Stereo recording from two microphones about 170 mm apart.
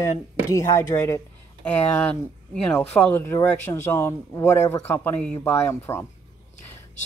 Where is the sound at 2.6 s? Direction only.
10° left (ahead or behind).